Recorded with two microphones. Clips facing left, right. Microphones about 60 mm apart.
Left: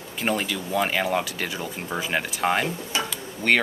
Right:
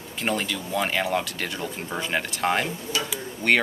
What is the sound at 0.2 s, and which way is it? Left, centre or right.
Speech, centre.